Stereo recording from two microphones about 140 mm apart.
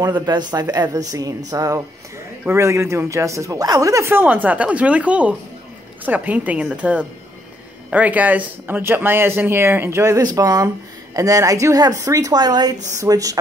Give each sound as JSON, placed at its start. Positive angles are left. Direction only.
{"t": 0.0, "sound": "speech", "side_deg": -30}